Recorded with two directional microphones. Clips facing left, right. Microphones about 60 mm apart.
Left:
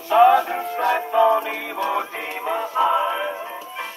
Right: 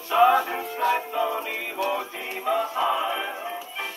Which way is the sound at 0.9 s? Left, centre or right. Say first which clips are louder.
Left 9 dB; left.